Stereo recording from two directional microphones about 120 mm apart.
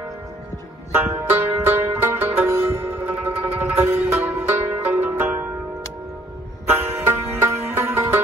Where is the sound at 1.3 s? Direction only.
15° right (ahead or behind).